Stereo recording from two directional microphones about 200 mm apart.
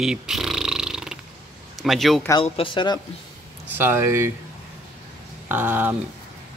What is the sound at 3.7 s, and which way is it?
Speech, 10° right (ahead or behind).